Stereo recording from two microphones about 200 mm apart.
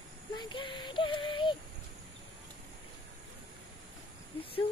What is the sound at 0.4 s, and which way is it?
Child singing, 25° left (ahead or behind).